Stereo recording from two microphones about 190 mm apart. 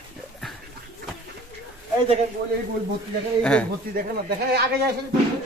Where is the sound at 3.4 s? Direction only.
5° left (ahead or behind).